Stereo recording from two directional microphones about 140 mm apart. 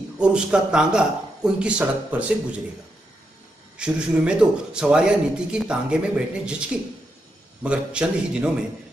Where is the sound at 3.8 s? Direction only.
5° right (ahead or behind).